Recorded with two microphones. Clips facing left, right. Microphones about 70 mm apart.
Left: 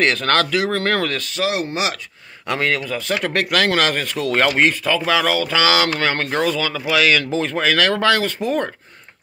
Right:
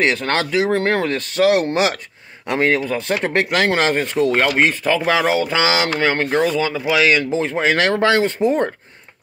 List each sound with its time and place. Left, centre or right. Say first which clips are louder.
0.0 s speech: left 1 dB; centre
1.2 s speech: right 6 dB; right
2.4 s speech: right 3 dB; right